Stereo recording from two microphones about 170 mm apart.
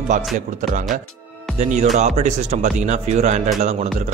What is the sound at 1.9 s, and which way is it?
A man's voice, 40° right (ahead or behind).